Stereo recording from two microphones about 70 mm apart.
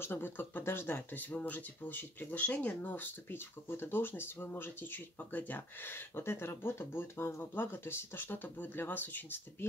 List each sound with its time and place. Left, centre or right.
0.0 s speech: left